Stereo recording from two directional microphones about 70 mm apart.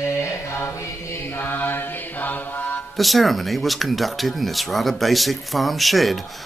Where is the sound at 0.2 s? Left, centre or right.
Left.